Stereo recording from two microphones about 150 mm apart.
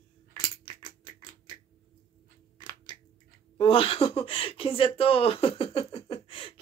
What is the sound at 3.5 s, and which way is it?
Speech, 40° left (ahead or behind).